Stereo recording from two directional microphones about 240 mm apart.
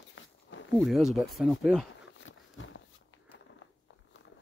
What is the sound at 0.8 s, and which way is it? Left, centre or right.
Speech, centre.